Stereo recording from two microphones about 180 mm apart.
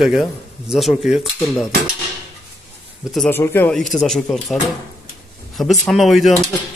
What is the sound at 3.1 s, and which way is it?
A man's voice, 10° left (ahead or behind).